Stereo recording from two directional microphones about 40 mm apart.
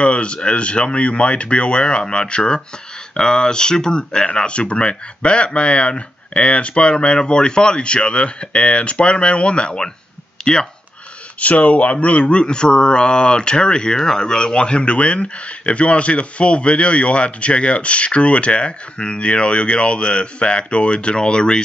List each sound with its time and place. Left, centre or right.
0.0 s speech: left
11.3 s speech: left